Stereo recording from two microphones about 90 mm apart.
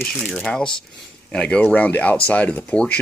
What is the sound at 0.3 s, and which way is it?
Speech, 5° left (ahead or behind).